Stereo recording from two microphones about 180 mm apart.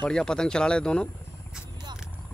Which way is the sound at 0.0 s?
5° left (ahead or behind).